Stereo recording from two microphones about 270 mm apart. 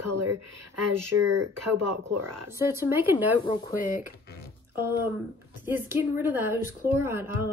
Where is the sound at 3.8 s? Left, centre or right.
Left.